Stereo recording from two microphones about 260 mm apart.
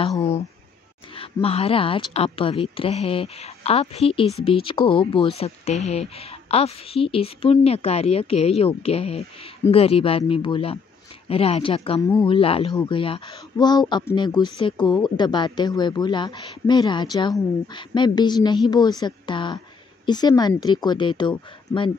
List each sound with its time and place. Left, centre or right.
1.1 s speech: left